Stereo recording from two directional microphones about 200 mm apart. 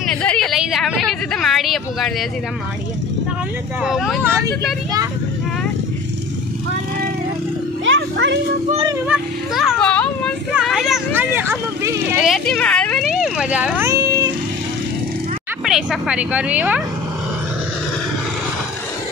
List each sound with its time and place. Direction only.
0.1 s a woman's voice: 5° left (ahead or behind)
3.8 s speech: centre (ahead or behind)
7.8 s speech: 65° right (ahead or behind)
9.0 s speech: 5° right (ahead or behind)
12.2 s speech: centre (ahead or behind)
13.2 s vehicle: 5° right (ahead or behind)
15.6 s speech: centre (ahead or behind)